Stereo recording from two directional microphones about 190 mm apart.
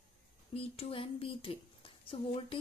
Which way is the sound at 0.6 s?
30° left (ahead or behind).